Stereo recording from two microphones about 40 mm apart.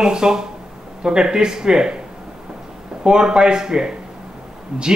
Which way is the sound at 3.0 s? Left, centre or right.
Centre.